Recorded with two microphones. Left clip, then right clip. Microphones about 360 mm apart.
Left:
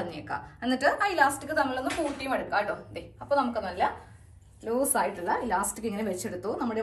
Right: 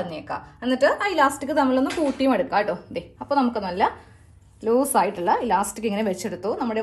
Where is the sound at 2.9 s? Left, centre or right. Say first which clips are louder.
Right 3 dB; centre.